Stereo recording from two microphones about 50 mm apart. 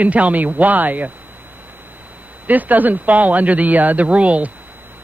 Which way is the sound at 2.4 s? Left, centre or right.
Right.